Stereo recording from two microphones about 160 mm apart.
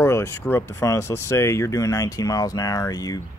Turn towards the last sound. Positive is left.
turn(degrees=25)  # may be behind; listen again after turning